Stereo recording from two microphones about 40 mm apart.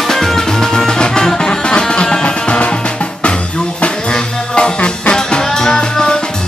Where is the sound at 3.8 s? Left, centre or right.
Left.